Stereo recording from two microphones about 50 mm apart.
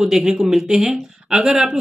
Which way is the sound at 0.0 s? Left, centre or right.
Centre.